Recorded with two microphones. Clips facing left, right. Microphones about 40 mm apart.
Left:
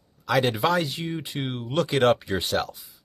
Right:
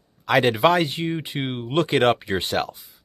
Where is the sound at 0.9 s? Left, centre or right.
Right.